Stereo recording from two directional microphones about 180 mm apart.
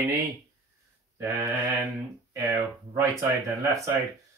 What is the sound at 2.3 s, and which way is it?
Speech, 15° right (ahead or behind).